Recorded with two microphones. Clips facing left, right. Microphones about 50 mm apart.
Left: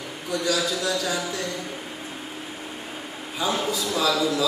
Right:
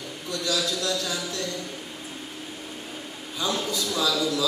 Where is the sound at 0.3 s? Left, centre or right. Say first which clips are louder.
Left 3 dB; centre.